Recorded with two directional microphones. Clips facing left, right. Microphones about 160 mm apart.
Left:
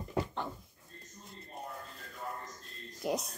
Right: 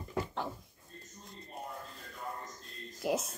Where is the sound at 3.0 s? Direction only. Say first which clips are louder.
Right 1 dB; centre (ahead or behind).